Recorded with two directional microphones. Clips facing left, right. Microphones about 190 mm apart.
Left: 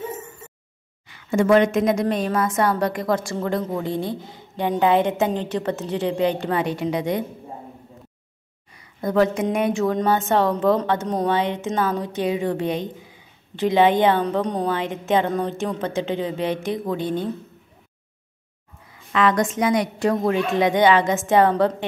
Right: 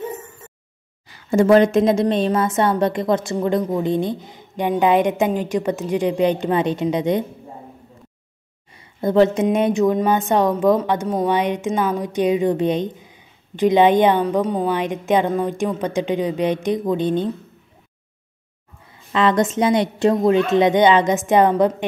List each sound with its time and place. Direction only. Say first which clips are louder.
1.0 s a woman's voice: right 4 dB; 35° right (ahead or behind); by 7.2 s 20° right (ahead or behind)
8.7 s speech: right 4 dB; 25° right (ahead or behind)
14.2 s speech: right 3 dB; 5° right (ahead or behind)
19.1 s a woman's voice: right 2 dB; 25° right (ahead or behind)